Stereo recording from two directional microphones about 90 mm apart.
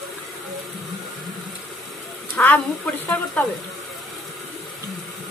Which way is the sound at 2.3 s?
20° left (ahead or behind).